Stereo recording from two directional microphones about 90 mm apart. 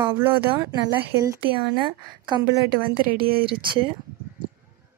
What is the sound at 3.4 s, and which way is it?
Speech, 75° right (ahead or behind).